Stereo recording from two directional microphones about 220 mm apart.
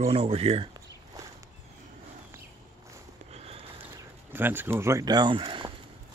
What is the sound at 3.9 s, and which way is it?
Speech, 10° right (ahead or behind).